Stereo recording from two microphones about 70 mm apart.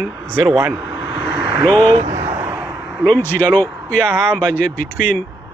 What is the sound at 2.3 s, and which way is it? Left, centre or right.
Vehicle, right.